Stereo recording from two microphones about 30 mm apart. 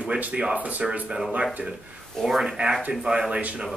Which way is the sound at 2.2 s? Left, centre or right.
Centre.